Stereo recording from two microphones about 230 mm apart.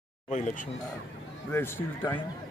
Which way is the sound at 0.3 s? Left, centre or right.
Left.